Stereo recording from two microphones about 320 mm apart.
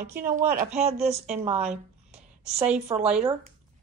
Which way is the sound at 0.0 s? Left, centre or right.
Right.